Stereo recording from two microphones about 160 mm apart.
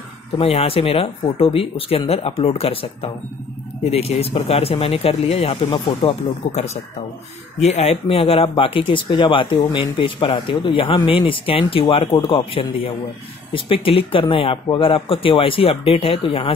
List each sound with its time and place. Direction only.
0.4 s speech: 35° left (ahead or behind)